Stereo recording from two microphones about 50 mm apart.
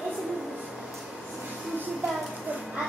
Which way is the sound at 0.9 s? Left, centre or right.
Centre.